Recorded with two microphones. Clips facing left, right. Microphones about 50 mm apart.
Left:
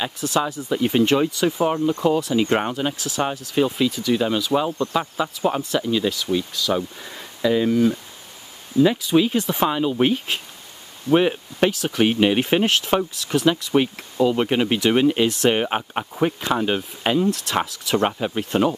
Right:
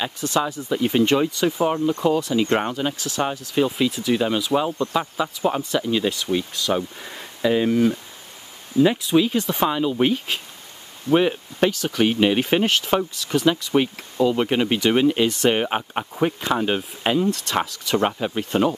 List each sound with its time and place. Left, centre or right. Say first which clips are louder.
0.0 s speech: even; centre
4.1 s speech: even; centre
6.7 s speech: even; centre
9.1 s speech: left 1 dB; centre